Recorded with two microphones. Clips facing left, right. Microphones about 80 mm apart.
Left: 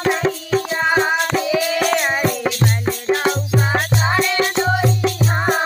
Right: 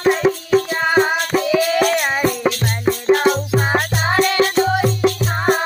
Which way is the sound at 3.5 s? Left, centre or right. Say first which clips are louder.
Right 1 dB; right.